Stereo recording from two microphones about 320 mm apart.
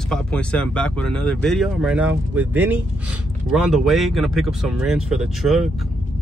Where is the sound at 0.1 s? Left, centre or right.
Centre.